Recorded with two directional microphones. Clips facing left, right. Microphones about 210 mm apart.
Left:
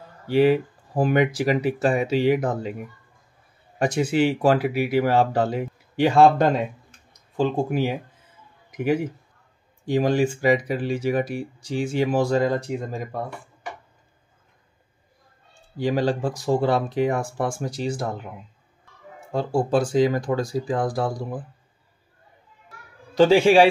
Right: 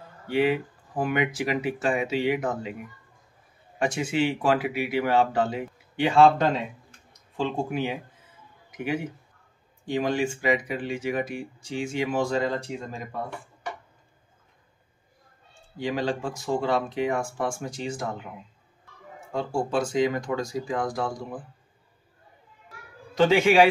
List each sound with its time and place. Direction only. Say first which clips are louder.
0.3 s speech: left 6 dB; 35° left (ahead or behind)
9.8 s speech: left 5 dB; 40° left (ahead or behind)
15.8 s speech: left 5 dB; 35° left (ahead or behind)
19.3 s speech: left 5 dB; 35° left (ahead or behind)
23.1 s speech: left 4 dB; 35° left (ahead or behind)